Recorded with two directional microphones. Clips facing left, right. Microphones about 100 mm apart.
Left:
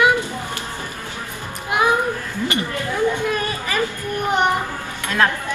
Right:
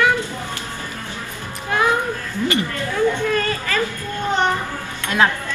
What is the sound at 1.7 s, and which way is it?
Music, 15° left (ahead or behind).